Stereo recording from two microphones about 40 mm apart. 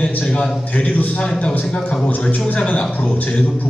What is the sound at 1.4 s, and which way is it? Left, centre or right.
Speech, left.